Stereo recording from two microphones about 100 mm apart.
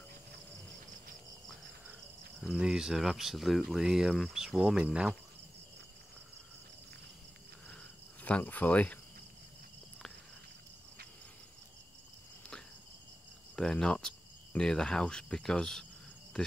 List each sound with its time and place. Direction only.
2.4 s speech: 5° right (ahead or behind)
7.6 s cricket: 15° left (ahead or behind)
13.6 s cricket: 5° left (ahead or behind)
16.3 s insect: 10° left (ahead or behind)